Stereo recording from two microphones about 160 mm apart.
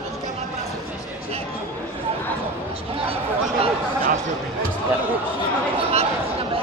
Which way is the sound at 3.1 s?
35° right (ahead or behind).